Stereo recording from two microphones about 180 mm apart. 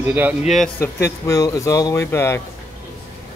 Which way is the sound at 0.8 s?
15° left (ahead or behind).